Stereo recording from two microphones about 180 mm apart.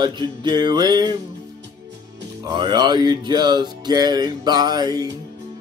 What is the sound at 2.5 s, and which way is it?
Speech, 25° right (ahead or behind).